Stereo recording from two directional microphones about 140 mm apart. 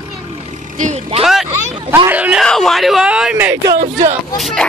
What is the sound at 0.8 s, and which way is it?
Speech, 55° right (ahead or behind).